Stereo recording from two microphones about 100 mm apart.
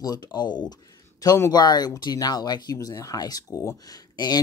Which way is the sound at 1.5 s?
45° left (ahead or behind).